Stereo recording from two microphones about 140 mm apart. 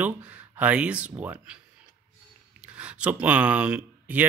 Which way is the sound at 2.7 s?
10° right (ahead or behind).